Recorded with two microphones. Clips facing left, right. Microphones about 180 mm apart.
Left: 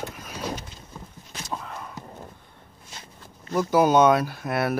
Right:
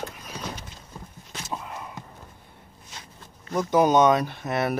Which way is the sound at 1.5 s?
5° right (ahead or behind).